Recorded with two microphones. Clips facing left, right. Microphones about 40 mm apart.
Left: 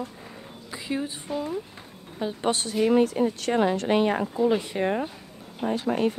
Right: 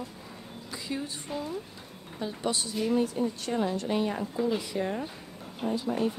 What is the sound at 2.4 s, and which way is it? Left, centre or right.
Speech, left.